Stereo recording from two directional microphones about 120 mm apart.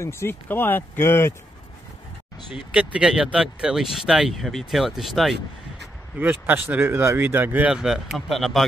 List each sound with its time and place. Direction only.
0.0 s speech: 20° left (ahead or behind)
2.5 s speech: 10° right (ahead or behind)
6.1 s speech: 15° right (ahead or behind); by 8.6 s centre (ahead or behind)